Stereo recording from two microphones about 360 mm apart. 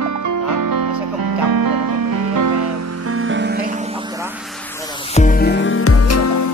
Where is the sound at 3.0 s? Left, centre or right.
Right.